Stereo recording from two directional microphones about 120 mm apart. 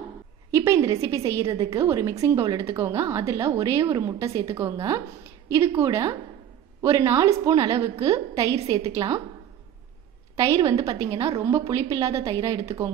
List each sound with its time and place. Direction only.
0.5 s a woman's voice: 25° right (ahead or behind)
5.8 s a woman's voice: 25° right (ahead or behind)
10.3 s a woman's voice: 25° right (ahead or behind)